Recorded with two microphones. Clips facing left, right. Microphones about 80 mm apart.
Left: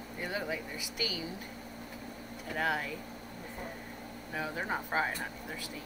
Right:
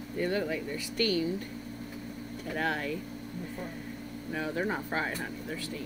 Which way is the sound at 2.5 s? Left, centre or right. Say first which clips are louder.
Right 1 dB; centre.